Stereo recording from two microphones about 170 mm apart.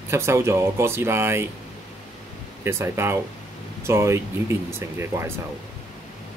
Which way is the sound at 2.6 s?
15° right (ahead or behind).